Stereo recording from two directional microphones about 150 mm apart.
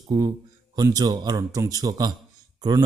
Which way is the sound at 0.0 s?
25° right (ahead or behind).